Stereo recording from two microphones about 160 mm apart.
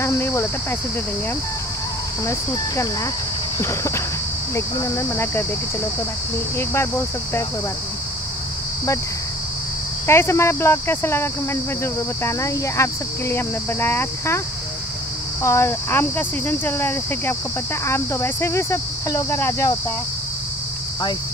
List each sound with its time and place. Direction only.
0.0 s speech: 15° left (ahead or behind)
2.2 s cricket: 20° left (ahead or behind)
3.5 s speech: 15° left (ahead or behind)
6.7 s speech: 15° left (ahead or behind)
10.0 s speech: 15° left (ahead or behind)
15.4 s speech: 15° left (ahead or behind)